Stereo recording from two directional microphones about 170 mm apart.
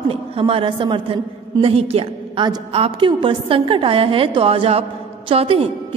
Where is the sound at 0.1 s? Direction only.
30° right (ahead or behind).